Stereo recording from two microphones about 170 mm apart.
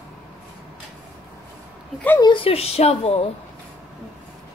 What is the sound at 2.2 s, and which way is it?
A woman's voice, 30° left (ahead or behind).